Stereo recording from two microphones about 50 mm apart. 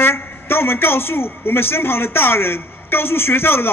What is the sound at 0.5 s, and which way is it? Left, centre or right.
A man's voice, left.